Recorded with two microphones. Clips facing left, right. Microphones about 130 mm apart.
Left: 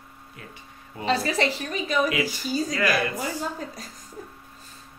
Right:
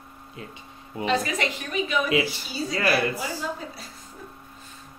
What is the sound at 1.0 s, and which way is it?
A woman's voice, 35° left (ahead or behind).